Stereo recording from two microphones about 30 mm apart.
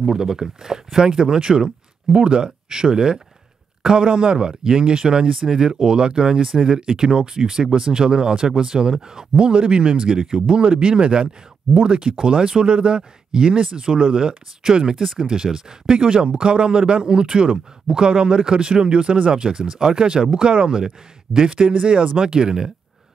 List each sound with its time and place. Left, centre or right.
0.0 s speech: centre
5.3 s speech: centre
9.4 s speech: right
10.7 s speech: right
20.8 s speech: centre
21.5 s speech: right